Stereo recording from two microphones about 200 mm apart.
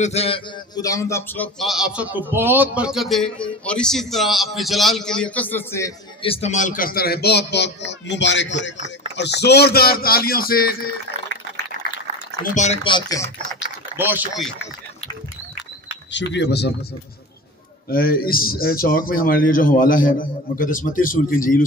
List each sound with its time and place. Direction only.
0.0 s a man's voice: 30° left (ahead or behind)
0.7 s speech: 15° left (ahead or behind)
6.2 s a man's voice: 30° left (ahead or behind); by 10.8 s 50° left (ahead or behind)
12.5 s speech: 35° left (ahead or behind)
13.9 s speech: 10° right (ahead or behind)
16.1 s a man's voice: 60° left (ahead or behind)
17.8 s a man's voice: 50° left (ahead or behind)